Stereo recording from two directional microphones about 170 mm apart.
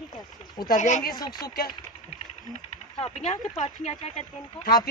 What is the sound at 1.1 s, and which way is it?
Speech, 25° left (ahead or behind).